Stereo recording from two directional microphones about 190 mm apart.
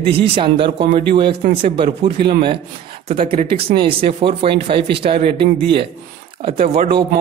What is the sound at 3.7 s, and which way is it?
Speech, 55° right (ahead or behind).